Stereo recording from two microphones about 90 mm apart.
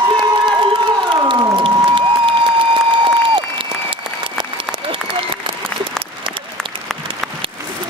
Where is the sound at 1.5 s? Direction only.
70° right (ahead or behind).